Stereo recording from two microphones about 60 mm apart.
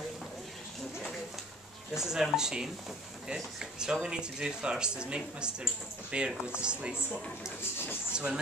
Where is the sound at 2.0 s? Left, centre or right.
Centre.